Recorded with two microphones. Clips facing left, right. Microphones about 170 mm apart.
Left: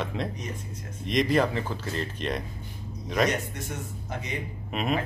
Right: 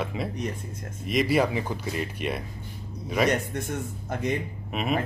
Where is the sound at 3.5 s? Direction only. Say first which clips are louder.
Right 5 dB; 55° right (ahead or behind).